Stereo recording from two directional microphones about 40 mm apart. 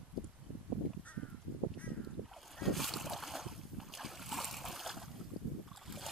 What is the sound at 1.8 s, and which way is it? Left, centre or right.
Boat, left.